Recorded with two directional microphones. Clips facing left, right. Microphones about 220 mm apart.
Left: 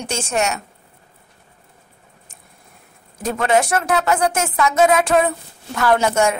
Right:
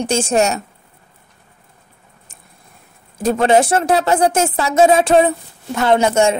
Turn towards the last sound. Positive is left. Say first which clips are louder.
# right 3 dB
turn(degrees=-25)  # may be behind; listen again after turning